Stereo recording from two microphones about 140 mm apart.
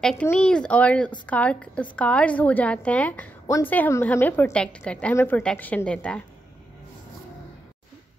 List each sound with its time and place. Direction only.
0.0 s a woman's voice: 5° left (ahead or behind)
3.4 s a woman's voice: 20° left (ahead or behind)
3.7 s a woman's voice: 10° left (ahead or behind)